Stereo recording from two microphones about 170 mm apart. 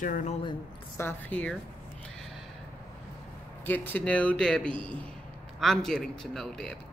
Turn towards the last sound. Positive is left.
turn(degrees=5)  # may be behind; listen again after turning